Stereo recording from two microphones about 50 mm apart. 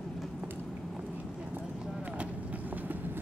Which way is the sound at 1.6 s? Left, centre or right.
Centre.